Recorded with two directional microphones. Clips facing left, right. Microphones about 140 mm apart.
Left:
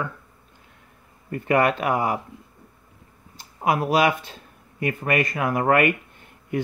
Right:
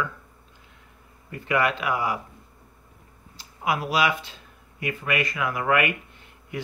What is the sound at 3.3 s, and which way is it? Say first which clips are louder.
Speech: left 4 dB; 45° left (ahead or behind).